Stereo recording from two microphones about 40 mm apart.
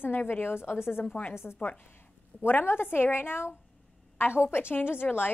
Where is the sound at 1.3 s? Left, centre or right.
Left.